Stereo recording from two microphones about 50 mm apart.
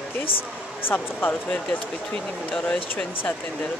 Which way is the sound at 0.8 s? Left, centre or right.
Left.